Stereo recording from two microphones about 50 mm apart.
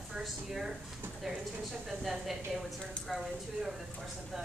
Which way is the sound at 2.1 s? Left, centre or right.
Centre.